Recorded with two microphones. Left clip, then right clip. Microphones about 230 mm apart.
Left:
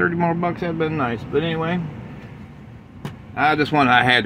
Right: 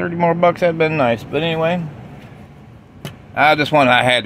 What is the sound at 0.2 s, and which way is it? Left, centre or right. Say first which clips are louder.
Speech: right 8 dB; right.